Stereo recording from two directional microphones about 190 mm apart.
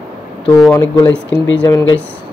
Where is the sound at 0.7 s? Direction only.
15° left (ahead or behind).